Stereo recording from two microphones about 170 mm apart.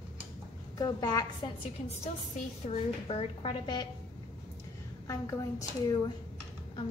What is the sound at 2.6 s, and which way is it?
A woman's voice, 35° left (ahead or behind).